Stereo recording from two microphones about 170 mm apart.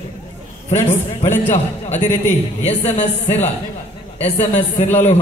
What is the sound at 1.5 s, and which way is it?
A man's voice, 45° left (ahead or behind).